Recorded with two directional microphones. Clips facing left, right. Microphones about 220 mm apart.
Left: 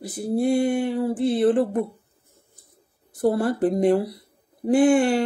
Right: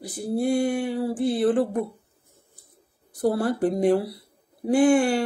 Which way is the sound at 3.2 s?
Centre (ahead or behind).